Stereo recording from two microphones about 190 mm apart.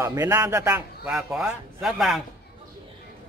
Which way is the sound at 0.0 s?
15° right (ahead or behind).